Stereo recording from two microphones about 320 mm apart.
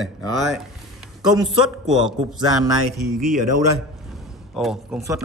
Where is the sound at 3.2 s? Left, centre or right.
Right.